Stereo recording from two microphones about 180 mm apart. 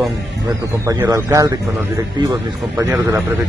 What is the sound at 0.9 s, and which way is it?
Speech, 20° right (ahead or behind).